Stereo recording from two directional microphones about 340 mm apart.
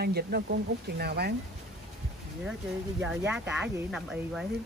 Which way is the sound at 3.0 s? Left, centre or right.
Centre.